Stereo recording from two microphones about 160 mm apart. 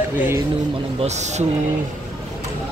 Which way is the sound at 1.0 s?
45° right (ahead or behind).